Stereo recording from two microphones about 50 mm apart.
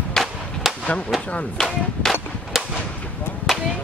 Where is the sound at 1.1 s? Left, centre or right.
Left.